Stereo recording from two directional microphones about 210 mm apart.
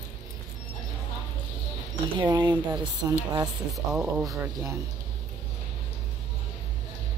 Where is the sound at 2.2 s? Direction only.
20° right (ahead or behind).